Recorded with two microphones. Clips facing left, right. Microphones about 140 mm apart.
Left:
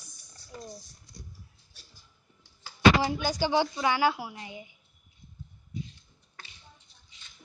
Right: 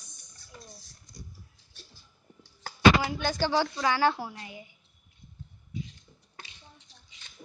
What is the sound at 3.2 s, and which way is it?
A woman's voice, 15° left (ahead or behind).